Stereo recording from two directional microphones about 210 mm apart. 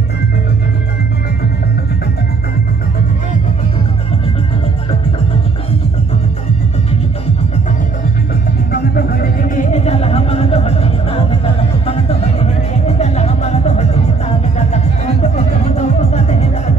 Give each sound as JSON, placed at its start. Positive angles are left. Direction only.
{"t": 8.9, "sound": "music", "side_deg": 45}
{"t": 15.3, "sound": "music", "side_deg": 30}